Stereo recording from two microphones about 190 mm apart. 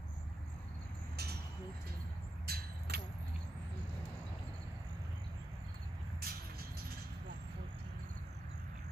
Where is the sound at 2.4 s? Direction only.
55° right (ahead or behind).